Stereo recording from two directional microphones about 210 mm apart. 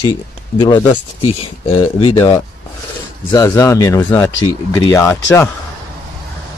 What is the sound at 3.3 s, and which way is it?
Speech, 20° left (ahead or behind).